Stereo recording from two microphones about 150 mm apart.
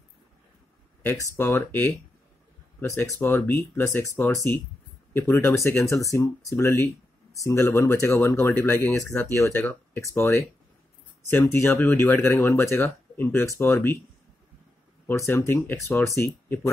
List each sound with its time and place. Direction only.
1.0 s speech: 20° left (ahead or behind)
15.0 s speech: 15° left (ahead or behind)